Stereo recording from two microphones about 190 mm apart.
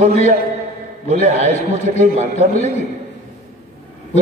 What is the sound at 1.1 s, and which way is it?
Speech, 40° right (ahead or behind).